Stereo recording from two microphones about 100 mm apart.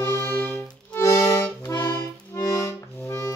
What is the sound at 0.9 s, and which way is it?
Accordion, 30° left (ahead or behind).